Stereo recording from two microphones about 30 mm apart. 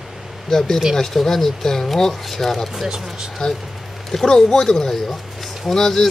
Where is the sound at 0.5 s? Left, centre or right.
Centre.